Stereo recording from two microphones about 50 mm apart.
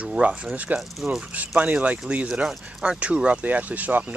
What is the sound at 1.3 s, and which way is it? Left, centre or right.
Speech, right.